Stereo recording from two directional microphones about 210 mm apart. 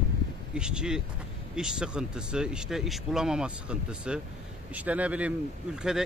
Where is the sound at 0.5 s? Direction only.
5° right (ahead or behind).